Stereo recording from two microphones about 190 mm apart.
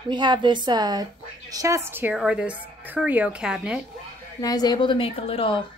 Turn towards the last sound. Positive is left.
turn(degrees=30)  # may be behind; listen again after turning